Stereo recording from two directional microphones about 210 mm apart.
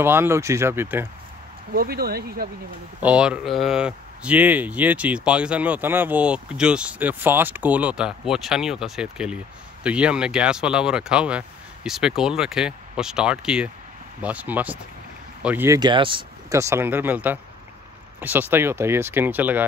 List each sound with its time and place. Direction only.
0.0 s speech: 10° right (ahead or behind)
1.7 s speech: 45° right (ahead or behind)
3.0 s speech: 5° right (ahead or behind)